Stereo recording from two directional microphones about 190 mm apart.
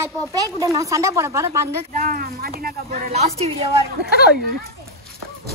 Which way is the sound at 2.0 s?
50° right (ahead or behind).